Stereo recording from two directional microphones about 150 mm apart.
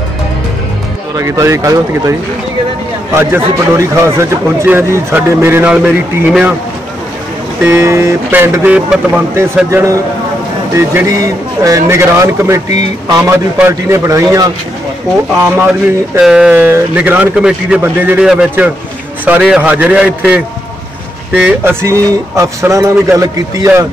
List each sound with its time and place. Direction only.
1.1 s speech: 20° right (ahead or behind)
3.2 s speech: 15° right (ahead or behind)
7.6 s speech: 20° right (ahead or behind)
10.7 s speech: 15° right (ahead or behind)
21.5 s speech: 15° right (ahead or behind)